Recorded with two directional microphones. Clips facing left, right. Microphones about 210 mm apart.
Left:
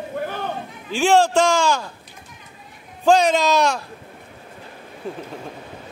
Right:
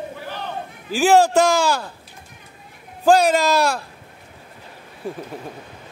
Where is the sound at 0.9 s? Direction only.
5° right (ahead or behind).